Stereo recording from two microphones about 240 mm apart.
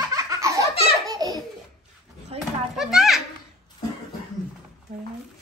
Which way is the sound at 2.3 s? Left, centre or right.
Right.